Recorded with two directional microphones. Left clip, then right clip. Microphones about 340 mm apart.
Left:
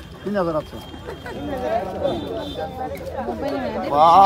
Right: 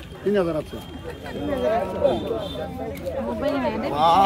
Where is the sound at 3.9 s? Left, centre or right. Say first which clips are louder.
Left 6 dB; centre.